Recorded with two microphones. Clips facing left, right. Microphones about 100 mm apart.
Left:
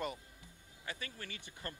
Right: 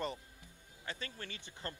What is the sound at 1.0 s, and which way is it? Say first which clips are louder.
Speech: right 1 dB; 25° right (ahead or behind).